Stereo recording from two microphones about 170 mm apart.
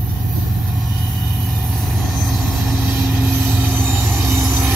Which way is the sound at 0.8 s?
Centre (ahead or behind).